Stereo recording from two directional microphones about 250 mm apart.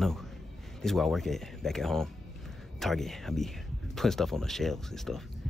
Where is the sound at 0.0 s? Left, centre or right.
Centre.